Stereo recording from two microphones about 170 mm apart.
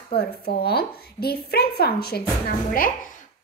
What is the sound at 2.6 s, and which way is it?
Speech, 55° left (ahead or behind).